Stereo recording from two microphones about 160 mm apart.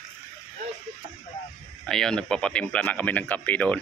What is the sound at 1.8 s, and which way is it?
Speech, 5° left (ahead or behind).